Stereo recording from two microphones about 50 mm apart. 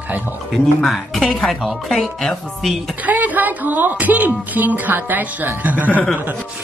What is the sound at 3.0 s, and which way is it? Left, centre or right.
Speech, right.